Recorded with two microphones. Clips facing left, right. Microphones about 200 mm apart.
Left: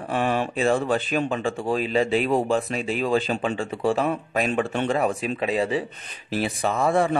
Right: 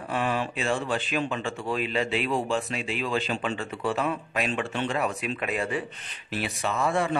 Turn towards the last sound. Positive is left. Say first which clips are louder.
# left 5 dB
turn(degrees=35)  # may be behind; listen again after turning